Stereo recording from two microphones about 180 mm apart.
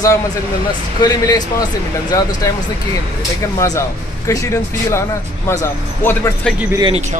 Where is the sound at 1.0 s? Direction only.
25° left (ahead or behind).